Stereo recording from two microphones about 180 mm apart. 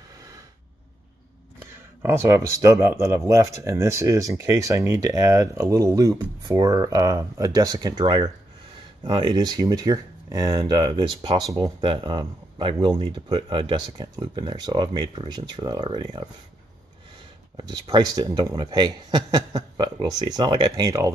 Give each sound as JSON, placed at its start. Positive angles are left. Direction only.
{"t": 1.6, "sound": "speech", "side_deg": -15}
{"t": 17.6, "sound": "speech", "side_deg": -25}